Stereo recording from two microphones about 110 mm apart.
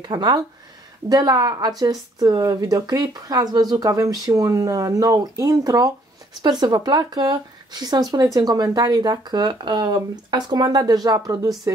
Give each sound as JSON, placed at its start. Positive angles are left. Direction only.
{"t": 0.0, "sound": "speech", "side_deg": -40}